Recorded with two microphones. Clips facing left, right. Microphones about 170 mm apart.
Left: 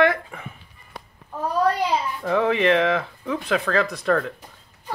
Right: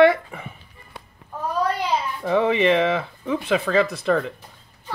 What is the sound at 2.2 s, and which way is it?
A child's voice, 5° right (ahead or behind).